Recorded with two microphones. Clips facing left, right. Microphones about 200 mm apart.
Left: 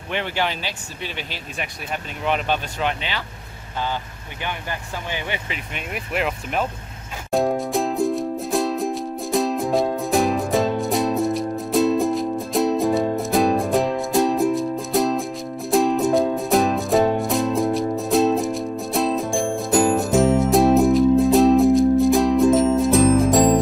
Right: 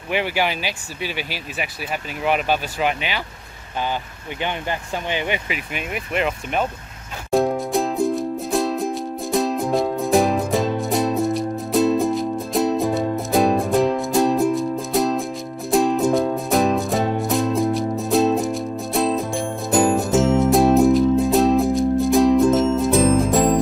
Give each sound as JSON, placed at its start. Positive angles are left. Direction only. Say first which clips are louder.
{"t": 0.1, "sound": "speech", "louder": "right 3 dB", "side_deg": -10}
{"t": 4.4, "sound": "speech", "louder": "right 4 dB", "side_deg": -20}
{"t": 5.7, "sound": "speech", "louder": "right 1 dB", "side_deg": -5}
{"t": 7.2, "sound": "music", "louder": "right 1 dB", "side_deg": 0}